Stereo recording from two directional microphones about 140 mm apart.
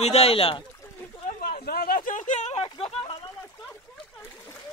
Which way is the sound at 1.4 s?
90° left.